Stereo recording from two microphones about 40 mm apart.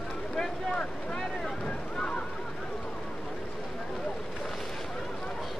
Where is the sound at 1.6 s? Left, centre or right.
Left.